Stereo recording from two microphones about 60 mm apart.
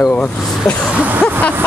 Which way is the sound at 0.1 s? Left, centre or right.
Left.